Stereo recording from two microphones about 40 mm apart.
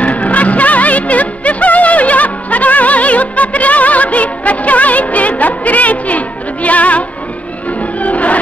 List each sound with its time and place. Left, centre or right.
0.0 s music: left